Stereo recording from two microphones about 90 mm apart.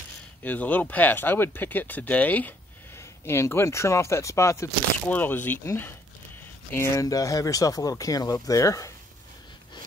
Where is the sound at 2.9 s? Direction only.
30° left (ahead or behind).